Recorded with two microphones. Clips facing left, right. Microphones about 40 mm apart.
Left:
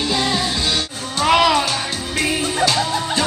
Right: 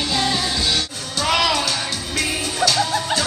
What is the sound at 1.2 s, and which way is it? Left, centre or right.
Music, centre.